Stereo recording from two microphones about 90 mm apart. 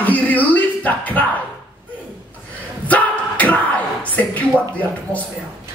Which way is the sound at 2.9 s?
15° left (ahead or behind).